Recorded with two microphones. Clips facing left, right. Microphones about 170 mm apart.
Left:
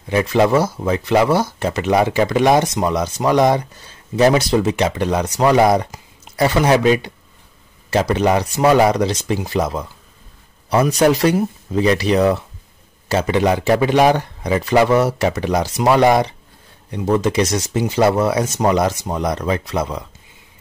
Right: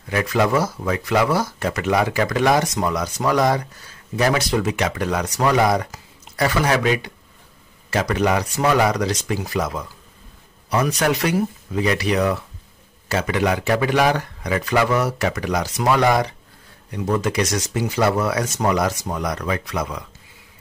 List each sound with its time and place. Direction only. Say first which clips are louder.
0.1 s speech: left 4 dB; 25° left (ahead or behind)